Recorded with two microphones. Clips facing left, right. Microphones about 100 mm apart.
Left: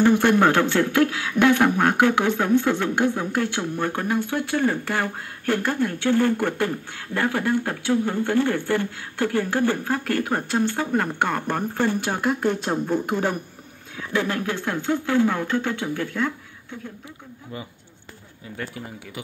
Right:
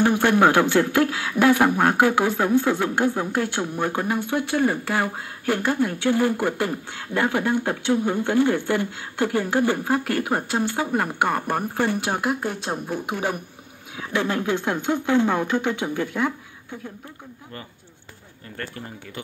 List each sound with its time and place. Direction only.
0.4 s speech: 10° right (ahead or behind)
14.1 s speech: 20° right (ahead or behind)
18.6 s speech: 5° left (ahead or behind)